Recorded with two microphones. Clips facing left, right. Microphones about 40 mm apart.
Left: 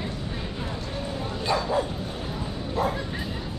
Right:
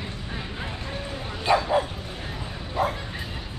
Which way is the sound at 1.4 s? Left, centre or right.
Right.